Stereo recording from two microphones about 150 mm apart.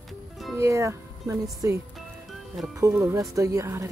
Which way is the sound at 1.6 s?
15° right (ahead or behind).